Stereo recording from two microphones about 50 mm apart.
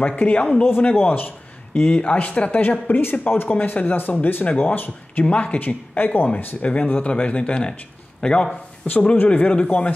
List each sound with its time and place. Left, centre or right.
0.0 s speech: left
0.7 s speech: left
1.7 s speech: left
3.0 s speech: left
5.2 s speech: left
5.6 s a man's voice: left; by 8.5 s centre
8.8 s speech: left